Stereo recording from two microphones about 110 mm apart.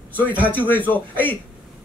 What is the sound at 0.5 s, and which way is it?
Speech, 15° left (ahead or behind).